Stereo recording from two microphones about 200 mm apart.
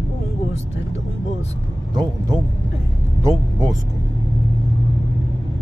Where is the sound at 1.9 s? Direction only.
20° right (ahead or behind).